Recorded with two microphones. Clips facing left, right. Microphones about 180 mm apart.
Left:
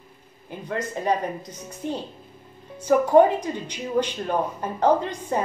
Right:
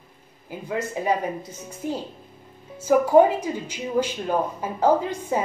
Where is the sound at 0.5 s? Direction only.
5° right (ahead or behind).